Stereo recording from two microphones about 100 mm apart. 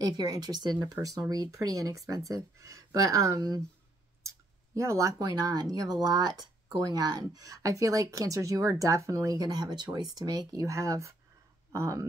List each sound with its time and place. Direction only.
0.0 s speech: 40° right (ahead or behind)
10.5 s speech: 35° right (ahead or behind)